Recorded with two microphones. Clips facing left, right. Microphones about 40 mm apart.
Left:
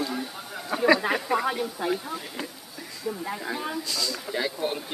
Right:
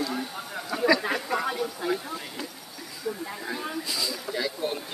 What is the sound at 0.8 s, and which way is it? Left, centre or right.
Speech, left.